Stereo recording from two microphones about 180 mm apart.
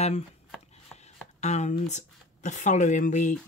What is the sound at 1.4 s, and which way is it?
Speech, 40° left (ahead or behind).